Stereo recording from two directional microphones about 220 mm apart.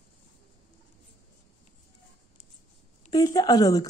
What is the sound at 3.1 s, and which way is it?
Speech, 15° left (ahead or behind).